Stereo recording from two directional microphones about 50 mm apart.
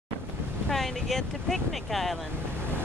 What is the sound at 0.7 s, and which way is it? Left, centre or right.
Speech, centre.